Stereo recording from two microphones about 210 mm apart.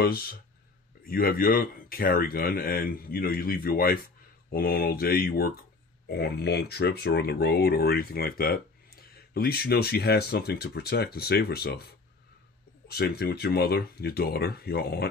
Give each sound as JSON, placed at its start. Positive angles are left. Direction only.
{"t": 0.0, "sound": "speech", "side_deg": 45}
{"t": 12.8, "sound": "speech", "side_deg": 50}